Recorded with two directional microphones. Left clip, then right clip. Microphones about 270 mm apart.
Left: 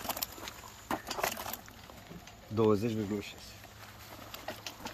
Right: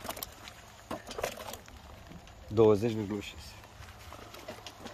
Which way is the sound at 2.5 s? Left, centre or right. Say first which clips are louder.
Right 4 dB; right.